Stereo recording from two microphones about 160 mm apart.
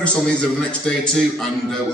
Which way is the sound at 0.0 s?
5° left (ahead or behind).